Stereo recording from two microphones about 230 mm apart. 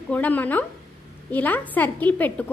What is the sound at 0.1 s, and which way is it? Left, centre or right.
A woman's voice, centre.